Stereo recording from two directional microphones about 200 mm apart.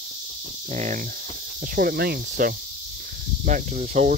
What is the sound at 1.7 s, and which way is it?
Cricket, 50° right (ahead or behind).